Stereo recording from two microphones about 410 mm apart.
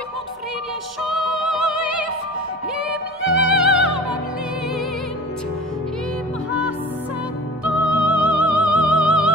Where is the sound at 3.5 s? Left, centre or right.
Centre.